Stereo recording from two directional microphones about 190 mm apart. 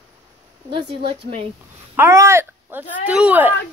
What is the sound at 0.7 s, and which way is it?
Speech, 25° right (ahead or behind).